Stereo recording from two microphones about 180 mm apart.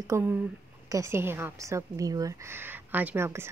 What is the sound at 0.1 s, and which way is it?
Speech, 15° right (ahead or behind).